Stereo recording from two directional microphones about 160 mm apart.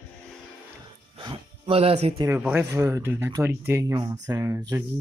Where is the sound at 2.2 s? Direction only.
15° right (ahead or behind).